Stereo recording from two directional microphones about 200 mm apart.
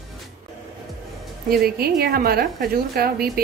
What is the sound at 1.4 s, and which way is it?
A woman's voice, 50° right (ahead or behind).